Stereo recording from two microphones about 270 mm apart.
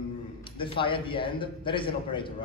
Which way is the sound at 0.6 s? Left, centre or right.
Centre.